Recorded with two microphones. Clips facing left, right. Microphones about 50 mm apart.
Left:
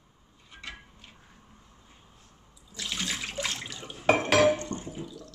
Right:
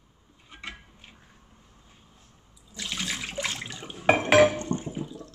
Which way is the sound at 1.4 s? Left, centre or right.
Centre.